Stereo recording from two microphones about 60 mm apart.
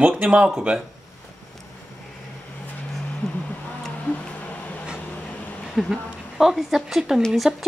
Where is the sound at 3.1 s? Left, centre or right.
Left.